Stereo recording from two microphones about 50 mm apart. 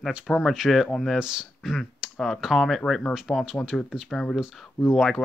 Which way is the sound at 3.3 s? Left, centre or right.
Centre.